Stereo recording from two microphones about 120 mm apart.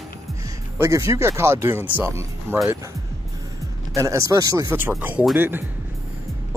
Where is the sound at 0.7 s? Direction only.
25° right (ahead or behind).